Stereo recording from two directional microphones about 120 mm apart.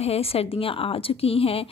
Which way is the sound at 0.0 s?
55° left (ahead or behind).